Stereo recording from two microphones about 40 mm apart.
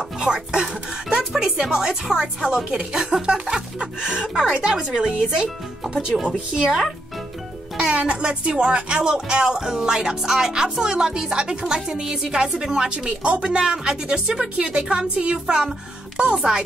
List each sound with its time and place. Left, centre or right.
0.2 s a woman's voice: centre
7.7 s a woman's voice: right